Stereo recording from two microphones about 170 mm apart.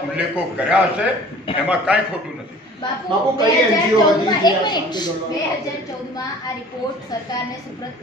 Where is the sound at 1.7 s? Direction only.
5° right (ahead or behind).